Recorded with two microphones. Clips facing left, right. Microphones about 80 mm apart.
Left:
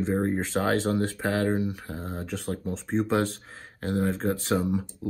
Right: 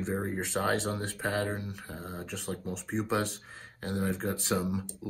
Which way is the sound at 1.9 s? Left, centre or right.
Centre.